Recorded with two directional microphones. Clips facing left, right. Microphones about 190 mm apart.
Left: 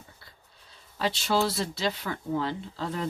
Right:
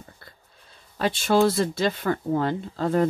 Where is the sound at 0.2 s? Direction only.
50° right (ahead or behind).